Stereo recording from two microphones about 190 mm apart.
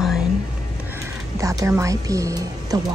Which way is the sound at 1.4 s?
15° right (ahead or behind).